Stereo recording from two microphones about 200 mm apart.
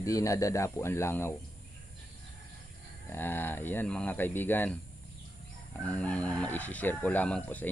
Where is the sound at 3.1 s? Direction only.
10° left (ahead or behind).